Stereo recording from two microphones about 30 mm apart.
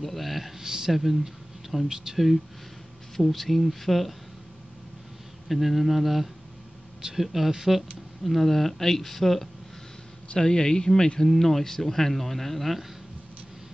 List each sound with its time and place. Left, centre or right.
0.0 s speech: centre
0.6 s speech: centre
1.7 s speech: centre
5.5 s speech: centre
8.2 s speech: centre
10.4 s speech: left
11.1 s speech: centre